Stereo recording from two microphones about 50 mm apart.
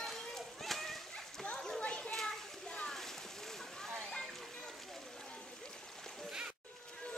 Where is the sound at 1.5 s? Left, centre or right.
Centre.